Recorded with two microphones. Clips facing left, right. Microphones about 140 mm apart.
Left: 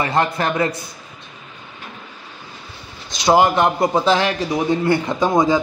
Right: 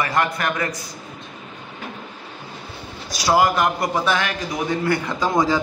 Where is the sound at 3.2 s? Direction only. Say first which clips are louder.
Left 3 dB; 25° left (ahead or behind).